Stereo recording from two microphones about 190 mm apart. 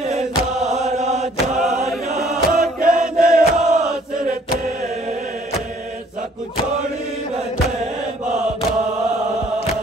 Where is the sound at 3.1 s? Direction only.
45° right (ahead or behind).